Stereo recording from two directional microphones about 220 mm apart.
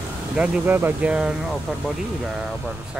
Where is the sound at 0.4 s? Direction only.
10° right (ahead or behind).